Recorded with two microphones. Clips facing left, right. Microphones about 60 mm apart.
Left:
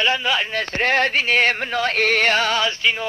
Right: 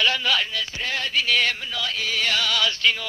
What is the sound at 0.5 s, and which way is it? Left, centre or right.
Music, left.